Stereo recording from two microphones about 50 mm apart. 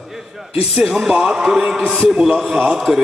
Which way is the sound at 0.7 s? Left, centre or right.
Centre.